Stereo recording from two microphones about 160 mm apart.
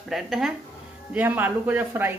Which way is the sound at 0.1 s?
5° right (ahead or behind).